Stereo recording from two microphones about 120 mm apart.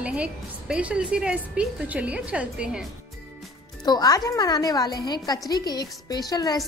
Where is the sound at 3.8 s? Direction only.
35° left (ahead or behind).